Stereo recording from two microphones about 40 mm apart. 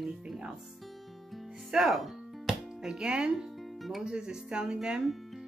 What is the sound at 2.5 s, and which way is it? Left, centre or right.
Music, centre.